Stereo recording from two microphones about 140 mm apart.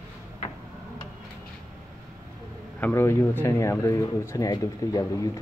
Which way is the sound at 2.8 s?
20° left (ahead or behind).